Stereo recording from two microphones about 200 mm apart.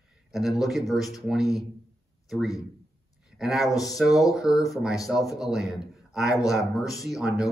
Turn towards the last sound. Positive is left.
turn(degrees=0)  # may be behind; listen again after turning